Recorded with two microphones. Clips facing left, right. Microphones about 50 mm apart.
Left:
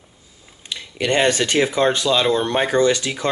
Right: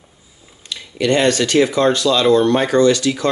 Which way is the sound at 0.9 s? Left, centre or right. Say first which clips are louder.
Right 3 dB; left.